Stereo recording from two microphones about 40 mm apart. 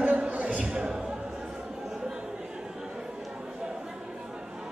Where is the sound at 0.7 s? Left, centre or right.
Right.